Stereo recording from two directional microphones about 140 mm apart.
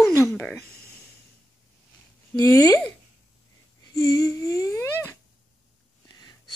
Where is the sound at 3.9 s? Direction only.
25° left (ahead or behind).